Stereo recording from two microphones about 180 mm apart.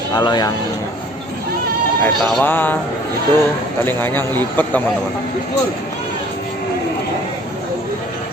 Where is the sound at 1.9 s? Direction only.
10° left (ahead or behind).